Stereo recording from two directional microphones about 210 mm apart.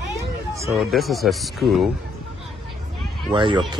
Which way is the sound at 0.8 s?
Centre (ahead or behind).